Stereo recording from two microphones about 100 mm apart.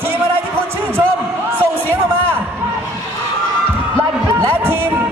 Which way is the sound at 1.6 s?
20° right (ahead or behind).